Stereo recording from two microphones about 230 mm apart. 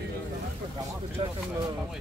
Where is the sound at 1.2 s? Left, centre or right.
Right.